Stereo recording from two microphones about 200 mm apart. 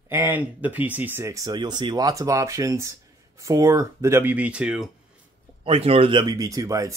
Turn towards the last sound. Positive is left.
turn(degrees=-15)  # may be behind; listen again after turning